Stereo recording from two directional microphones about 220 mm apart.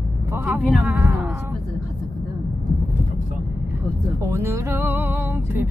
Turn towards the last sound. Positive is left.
turn(degrees=-10)  # may be behind; listen again after turning